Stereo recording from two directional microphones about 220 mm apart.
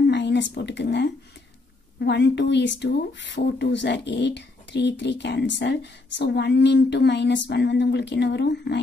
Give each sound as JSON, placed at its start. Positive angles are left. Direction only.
{"t": 0.0, "sound": "a woman's voice", "side_deg": 50}